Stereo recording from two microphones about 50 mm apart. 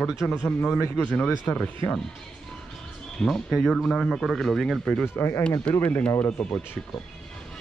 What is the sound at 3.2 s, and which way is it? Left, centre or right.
A man's voice, centre.